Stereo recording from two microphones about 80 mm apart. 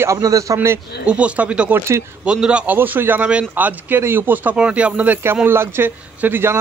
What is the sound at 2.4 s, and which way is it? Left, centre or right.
Speech, centre.